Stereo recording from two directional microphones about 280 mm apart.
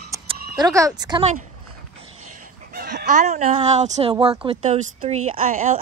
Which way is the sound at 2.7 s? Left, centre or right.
Right.